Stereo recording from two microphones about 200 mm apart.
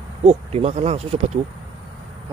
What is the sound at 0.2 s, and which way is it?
Speech, 30° right (ahead or behind).